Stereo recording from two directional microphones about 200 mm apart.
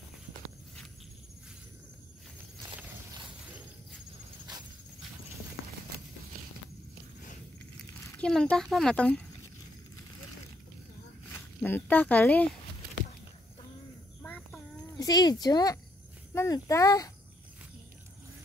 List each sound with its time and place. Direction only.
8.2 s speech: 5° left (ahead or behind)
11.6 s speech: 10° left (ahead or behind)
14.2 s a sound: 10° left (ahead or behind)
15.0 s speech: 20° left (ahead or behind)